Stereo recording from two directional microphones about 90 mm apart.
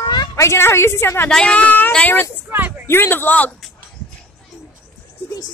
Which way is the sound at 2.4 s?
20° right (ahead or behind).